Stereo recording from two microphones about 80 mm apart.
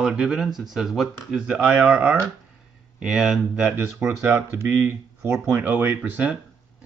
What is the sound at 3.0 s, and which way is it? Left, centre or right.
Speech, centre.